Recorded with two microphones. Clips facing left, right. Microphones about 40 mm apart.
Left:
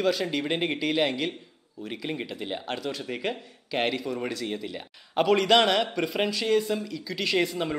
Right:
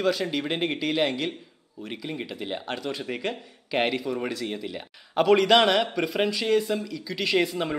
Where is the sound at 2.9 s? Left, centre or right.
Centre.